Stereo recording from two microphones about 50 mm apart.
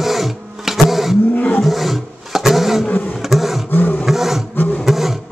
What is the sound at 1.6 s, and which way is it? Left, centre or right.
Roaring cats, centre.